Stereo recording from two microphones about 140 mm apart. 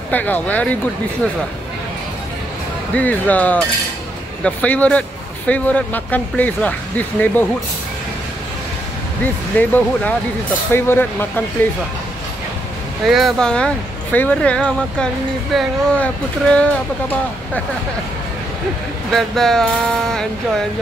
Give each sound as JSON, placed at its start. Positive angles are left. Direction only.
{"t": 0.1, "sound": "speech", "side_deg": 10}
{"t": 2.9, "sound": "speech", "side_deg": 10}
{"t": 9.2, "sound": "speech", "side_deg": 10}
{"t": 13.0, "sound": "speech", "side_deg": 0}
{"t": 19.1, "sound": "speech", "side_deg": 5}